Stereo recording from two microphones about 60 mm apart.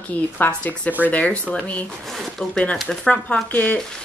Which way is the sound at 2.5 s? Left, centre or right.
Centre.